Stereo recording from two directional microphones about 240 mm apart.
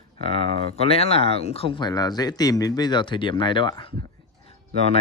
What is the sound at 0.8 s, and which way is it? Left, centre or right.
Speech, left.